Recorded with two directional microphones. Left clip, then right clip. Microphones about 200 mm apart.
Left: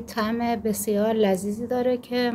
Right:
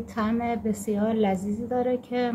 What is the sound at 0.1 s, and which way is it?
A woman's voice, 45° left (ahead or behind).